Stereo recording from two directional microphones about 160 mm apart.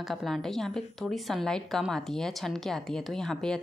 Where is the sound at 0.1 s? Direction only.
Centre (ahead or behind).